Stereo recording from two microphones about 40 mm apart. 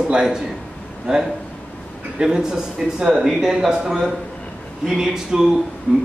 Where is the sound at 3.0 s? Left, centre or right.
Right.